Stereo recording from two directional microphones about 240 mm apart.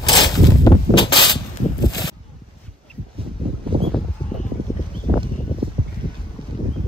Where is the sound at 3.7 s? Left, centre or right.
Right.